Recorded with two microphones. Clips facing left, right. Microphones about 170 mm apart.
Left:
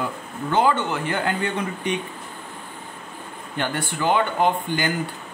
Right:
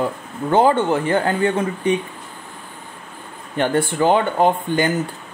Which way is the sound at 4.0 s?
35° right (ahead or behind).